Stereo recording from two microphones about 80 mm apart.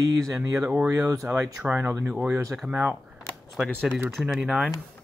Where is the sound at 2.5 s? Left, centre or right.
Centre.